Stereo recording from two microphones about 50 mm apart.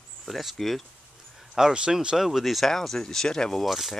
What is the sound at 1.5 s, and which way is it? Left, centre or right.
Speech, centre.